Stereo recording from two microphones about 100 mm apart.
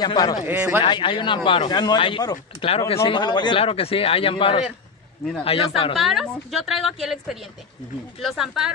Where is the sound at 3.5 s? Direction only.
70° left (ahead or behind).